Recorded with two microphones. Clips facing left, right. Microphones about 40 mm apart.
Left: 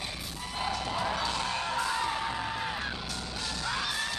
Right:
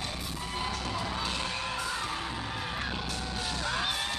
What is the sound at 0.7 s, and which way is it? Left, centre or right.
Music, left.